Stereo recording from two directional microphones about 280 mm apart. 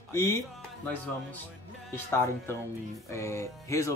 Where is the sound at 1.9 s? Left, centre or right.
Centre.